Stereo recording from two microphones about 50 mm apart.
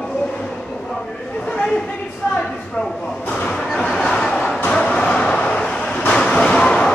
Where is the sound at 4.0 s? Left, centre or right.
Centre.